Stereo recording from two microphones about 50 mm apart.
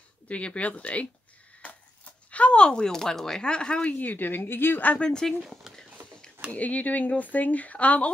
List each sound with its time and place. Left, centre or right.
0.3 s speech: left
2.3 s speech: left
4.0 s speech: left
4.9 s speech: centre
6.5 s speech: left